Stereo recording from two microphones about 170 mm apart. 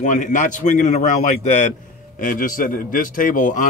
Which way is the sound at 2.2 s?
50° left (ahead or behind).